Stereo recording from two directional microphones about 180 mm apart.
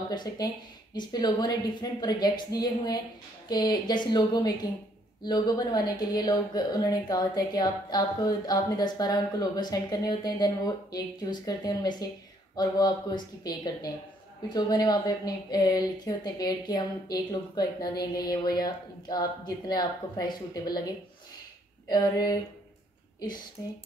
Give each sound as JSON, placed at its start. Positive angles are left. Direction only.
{"t": 0.1, "sound": "a woman's voice", "side_deg": 20}
{"t": 21.8, "sound": "a woman's voice", "side_deg": 20}
{"t": 23.6, "sound": "a sound", "side_deg": 15}